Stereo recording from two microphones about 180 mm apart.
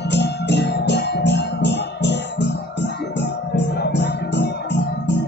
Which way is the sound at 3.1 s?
75° left (ahead or behind).